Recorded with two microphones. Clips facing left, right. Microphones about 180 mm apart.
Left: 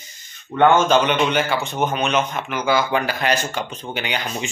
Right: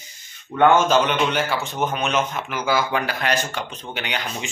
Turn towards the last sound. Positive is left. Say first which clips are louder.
# left 3 dB
turn(degrees=0)  # may be behind; listen again after turning